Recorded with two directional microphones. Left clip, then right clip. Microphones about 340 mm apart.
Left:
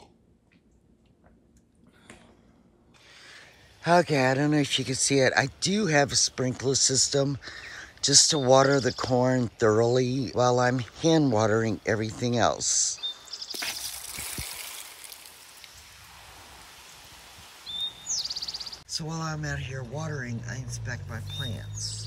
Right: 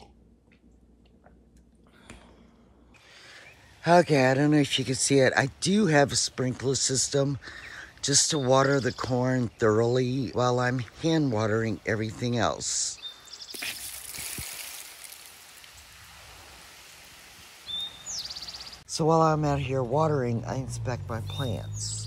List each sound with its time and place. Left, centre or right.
3.1 s speech: centre
13.6 s a sound: centre
18.1 s bird: right
19.0 s speech: centre